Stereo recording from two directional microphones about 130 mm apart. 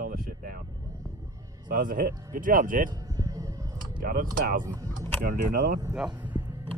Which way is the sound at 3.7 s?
90° right.